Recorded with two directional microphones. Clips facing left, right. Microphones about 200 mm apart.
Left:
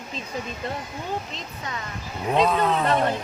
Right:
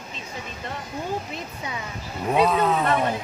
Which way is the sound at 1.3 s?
10° right (ahead or behind).